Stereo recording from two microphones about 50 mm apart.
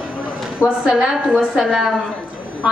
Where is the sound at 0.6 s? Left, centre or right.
Centre.